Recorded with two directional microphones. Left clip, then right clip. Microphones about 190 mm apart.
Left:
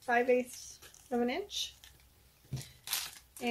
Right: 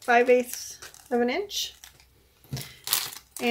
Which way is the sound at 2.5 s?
30° right (ahead or behind).